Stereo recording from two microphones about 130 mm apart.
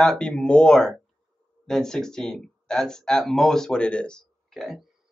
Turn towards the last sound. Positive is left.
turn(degrees=0)  # may be behind; listen again after turning